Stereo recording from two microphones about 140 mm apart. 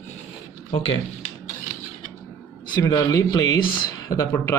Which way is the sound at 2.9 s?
25° left (ahead or behind).